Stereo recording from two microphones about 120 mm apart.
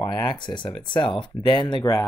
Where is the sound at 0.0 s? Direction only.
40° left (ahead or behind).